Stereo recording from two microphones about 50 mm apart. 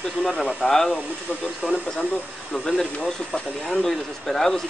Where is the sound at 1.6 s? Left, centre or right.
Centre.